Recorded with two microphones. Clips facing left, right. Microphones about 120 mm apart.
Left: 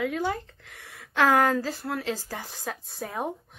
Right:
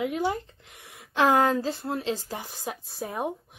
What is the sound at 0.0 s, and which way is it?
Speech, 20° right (ahead or behind).